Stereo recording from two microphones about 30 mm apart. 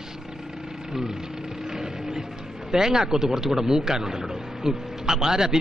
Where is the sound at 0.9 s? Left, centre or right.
Centre.